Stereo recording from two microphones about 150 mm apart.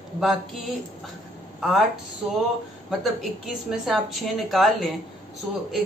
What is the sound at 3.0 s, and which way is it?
A man's voice, centre (ahead or behind).